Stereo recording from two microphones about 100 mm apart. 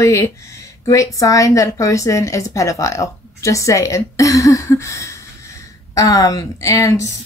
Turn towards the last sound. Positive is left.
turn(degrees=30)  # may be behind; listen again after turning